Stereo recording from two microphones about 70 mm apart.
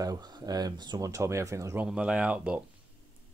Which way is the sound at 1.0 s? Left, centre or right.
Right.